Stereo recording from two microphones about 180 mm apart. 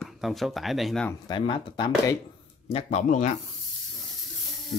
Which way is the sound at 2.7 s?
35° left (ahead or behind).